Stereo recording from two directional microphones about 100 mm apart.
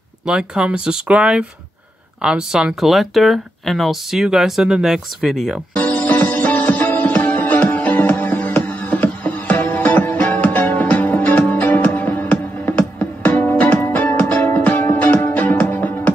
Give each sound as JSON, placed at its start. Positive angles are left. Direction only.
{"t": 0.3, "sound": "speech", "side_deg": -10}
{"t": 5.8, "sound": "music", "side_deg": 10}